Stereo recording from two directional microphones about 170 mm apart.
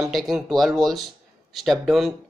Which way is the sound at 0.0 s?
Centre (ahead or behind).